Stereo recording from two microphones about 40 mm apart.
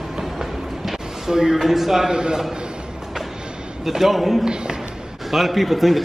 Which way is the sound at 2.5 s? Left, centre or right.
Right.